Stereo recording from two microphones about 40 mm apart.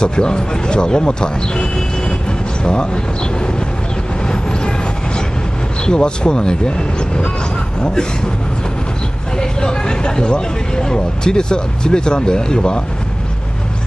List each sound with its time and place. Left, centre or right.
0.0 s speech: left
4.3 s vehicle: left
5.9 s speech: left
9.4 s speech: centre